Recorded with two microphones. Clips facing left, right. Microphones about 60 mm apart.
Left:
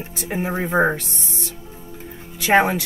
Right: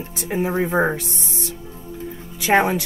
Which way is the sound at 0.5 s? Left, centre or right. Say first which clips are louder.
Left 2 dB; centre.